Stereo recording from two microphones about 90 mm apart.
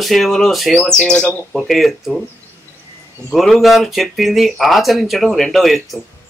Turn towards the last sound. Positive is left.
turn(degrees=0)  # may be behind; listen again after turning